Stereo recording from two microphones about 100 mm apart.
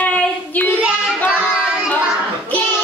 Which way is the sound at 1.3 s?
10° right (ahead or behind).